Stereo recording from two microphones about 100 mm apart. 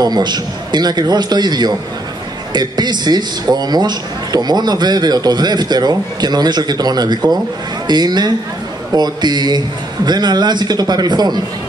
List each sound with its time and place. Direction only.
0.0 s a man's voice: 45° right (ahead or behind)